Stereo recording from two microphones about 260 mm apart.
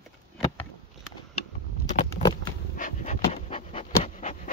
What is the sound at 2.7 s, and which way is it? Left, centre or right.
Pant, left.